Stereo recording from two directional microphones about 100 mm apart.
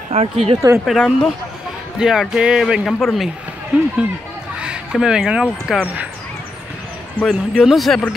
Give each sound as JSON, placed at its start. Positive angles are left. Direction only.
{"t": 0.1, "sound": "speech", "side_deg": -80}
{"t": 0.8, "sound": "a man's voice", "side_deg": 0}
{"t": 3.7, "sound": "speech", "side_deg": -15}
{"t": 7.2, "sound": "a man's voice", "side_deg": 5}